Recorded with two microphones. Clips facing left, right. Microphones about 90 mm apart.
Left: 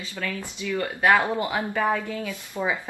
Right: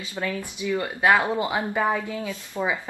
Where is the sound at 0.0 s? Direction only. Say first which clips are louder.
Right 2 dB; 20° right (ahead or behind).